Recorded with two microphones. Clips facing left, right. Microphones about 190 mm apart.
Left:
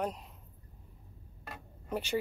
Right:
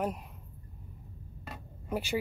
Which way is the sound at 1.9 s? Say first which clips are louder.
Right 1 dB; 10° right (ahead or behind).